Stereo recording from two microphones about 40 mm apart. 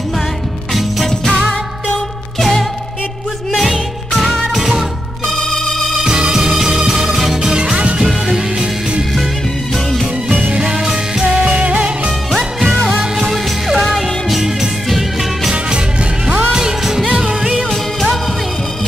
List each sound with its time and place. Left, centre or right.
3.5 s music: centre
5.5 s organ: centre
6.0 s music: centre
7.5 s music: right
8.0 s music: centre
10.5 s music: centre
11.4 s music: right
12.3 s music: centre
16.5 s music: centre